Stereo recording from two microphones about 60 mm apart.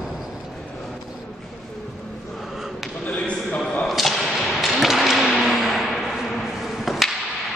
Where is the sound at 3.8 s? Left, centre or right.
Centre.